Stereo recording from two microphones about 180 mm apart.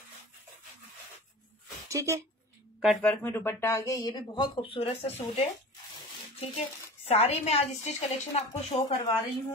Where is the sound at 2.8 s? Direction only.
Centre (ahead or behind); by 5.5 s 35° left (ahead or behind).